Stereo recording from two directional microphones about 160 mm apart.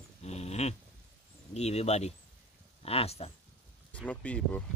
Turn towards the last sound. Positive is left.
turn(degrees=5)  # may be behind; listen again after turning